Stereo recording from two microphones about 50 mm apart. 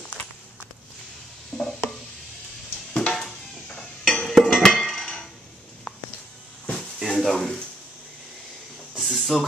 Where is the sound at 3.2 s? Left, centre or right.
Centre.